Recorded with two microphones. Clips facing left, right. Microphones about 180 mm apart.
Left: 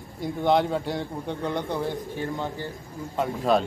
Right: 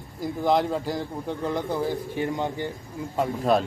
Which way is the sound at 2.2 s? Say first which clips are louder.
Right 3 dB; 15° right (ahead or behind).